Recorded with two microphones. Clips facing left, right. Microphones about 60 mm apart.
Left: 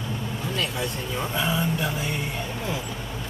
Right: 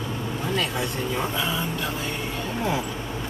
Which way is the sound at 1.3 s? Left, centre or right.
Centre.